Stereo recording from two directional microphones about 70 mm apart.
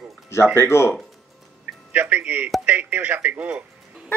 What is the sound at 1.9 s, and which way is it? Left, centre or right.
Speech, right.